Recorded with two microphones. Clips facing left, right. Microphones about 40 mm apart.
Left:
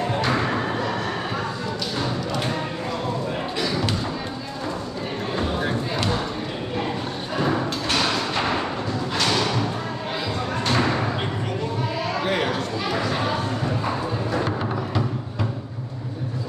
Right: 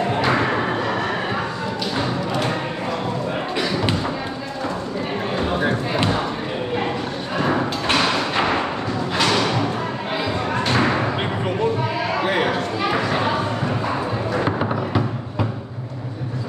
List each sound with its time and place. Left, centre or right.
0.1 s a sound: right
2.0 s music: centre
5.4 s music: centre
7.4 s thump: right
10.6 s basketball bounce: right
12.1 s a sound: centre
14.4 s music: right